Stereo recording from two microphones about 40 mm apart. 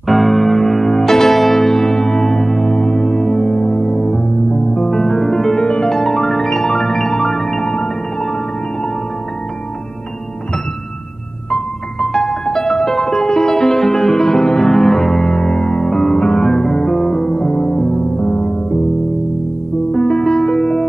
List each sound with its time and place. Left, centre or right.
0.0 s electric piano: centre
0.9 s music: centre
3.7 s music: left
11.5 s music: centre
19.9 s music: centre